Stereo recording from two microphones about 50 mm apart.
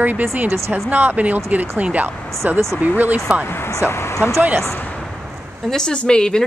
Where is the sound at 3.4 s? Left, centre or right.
Left.